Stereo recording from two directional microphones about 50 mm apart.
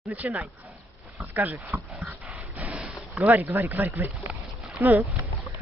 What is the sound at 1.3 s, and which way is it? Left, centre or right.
Speech, right.